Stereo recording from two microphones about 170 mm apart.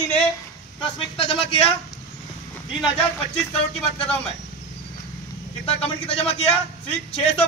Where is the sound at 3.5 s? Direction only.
35° left (ahead or behind).